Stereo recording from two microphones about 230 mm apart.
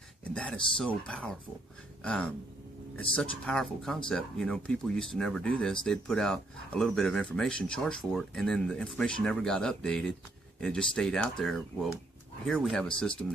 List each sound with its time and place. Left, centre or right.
0.2 s speech: centre
3.1 s speech: left
3.4 s speech: centre